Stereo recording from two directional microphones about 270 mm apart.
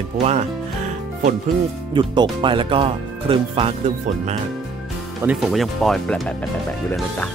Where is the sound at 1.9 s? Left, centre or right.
Centre.